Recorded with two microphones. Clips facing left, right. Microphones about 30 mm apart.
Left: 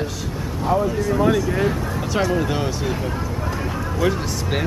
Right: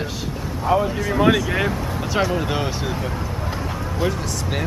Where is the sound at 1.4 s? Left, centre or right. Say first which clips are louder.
Left 1 dB; right.